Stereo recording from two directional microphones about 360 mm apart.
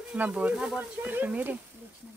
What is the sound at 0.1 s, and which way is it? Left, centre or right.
Speech, centre.